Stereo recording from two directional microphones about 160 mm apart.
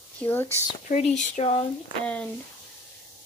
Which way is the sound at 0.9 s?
45° left (ahead or behind).